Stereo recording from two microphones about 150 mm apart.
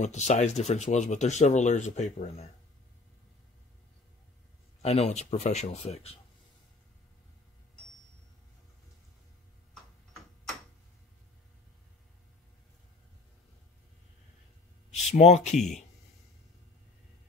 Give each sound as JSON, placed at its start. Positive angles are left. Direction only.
{"t": 0.0, "sound": "speech", "side_deg": 50}
{"t": 4.8, "sound": "speech", "side_deg": 45}
{"t": 15.0, "sound": "speech", "side_deg": 45}